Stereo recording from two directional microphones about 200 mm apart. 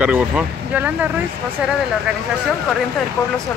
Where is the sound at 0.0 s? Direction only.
5° right (ahead or behind).